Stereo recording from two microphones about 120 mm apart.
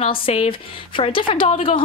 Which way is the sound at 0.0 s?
55° left (ahead or behind).